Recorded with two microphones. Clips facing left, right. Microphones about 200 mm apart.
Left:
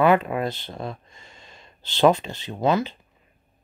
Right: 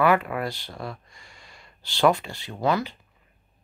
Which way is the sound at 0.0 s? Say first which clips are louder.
Left 3 dB; 20° left (ahead or behind).